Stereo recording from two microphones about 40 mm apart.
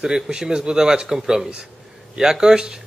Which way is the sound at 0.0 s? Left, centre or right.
Centre.